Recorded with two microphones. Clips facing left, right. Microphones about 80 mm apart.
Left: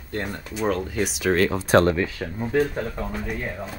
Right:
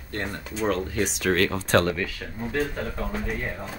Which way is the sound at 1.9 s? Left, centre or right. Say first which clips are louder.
Left 5 dB; left.